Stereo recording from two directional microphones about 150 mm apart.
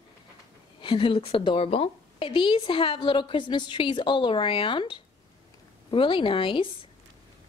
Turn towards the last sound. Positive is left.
turn(degrees=35)  # may be behind; listen again after turning